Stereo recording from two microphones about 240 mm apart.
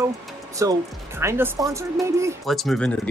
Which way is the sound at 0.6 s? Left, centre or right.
Centre.